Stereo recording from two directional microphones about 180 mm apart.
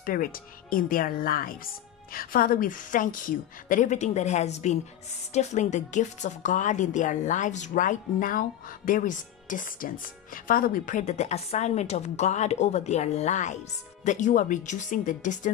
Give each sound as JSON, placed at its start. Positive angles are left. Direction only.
{"t": 0.0, "sound": "a woman's voice", "side_deg": 50}